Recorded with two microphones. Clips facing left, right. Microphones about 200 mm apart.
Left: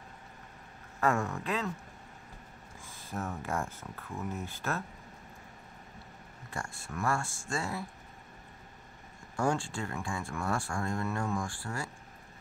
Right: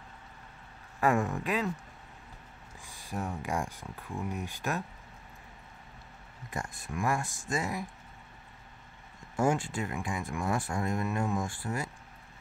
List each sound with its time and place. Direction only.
1.0 s speech: 15° right (ahead or behind)
2.8 s speech: 15° right (ahead or behind)
6.5 s speech: 20° right (ahead or behind)
9.4 s speech: 20° right (ahead or behind)